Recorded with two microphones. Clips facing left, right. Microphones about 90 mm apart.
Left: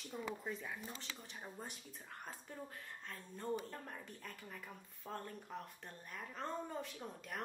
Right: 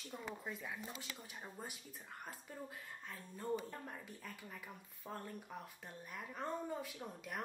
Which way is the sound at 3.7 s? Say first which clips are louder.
Even; 10° right (ahead or behind).